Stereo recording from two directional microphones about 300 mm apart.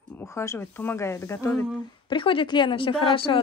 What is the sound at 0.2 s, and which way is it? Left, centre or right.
A woman's voice, centre.